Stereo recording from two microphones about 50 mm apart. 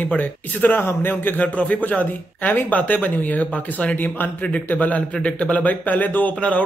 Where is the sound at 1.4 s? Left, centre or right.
Left.